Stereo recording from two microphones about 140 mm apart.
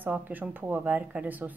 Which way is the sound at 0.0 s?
10° right (ahead or behind).